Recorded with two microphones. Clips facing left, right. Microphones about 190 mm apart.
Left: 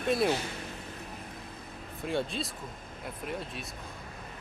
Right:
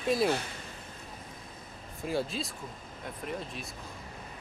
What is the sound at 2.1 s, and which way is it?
Speech, centre (ahead or behind).